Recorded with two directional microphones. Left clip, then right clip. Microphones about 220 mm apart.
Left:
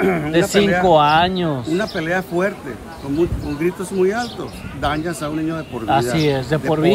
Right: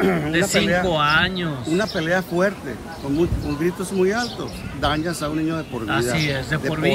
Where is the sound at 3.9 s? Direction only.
10° left (ahead or behind).